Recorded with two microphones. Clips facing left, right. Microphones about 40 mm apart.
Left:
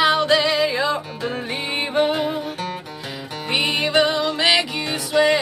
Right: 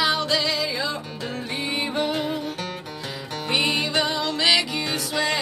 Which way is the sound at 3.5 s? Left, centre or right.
Centre.